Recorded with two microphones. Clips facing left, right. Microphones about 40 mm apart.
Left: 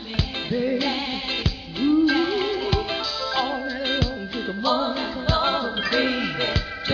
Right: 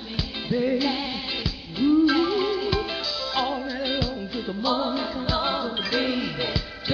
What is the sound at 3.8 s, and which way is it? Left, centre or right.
Music, left.